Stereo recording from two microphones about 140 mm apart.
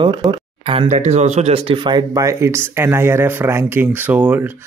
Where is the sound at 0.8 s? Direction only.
55° right (ahead or behind).